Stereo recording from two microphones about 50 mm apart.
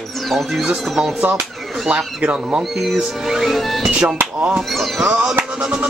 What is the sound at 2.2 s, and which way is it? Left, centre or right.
Speech, right.